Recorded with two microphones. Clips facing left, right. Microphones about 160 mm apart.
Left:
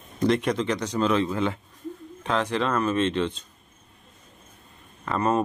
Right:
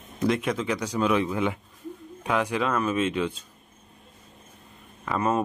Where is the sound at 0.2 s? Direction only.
5° right (ahead or behind).